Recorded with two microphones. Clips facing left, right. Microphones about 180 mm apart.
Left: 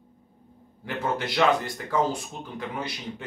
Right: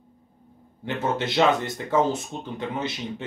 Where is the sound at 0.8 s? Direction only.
25° right (ahead or behind).